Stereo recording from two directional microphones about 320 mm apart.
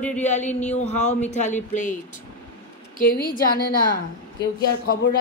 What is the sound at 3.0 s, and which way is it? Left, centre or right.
Speech, left.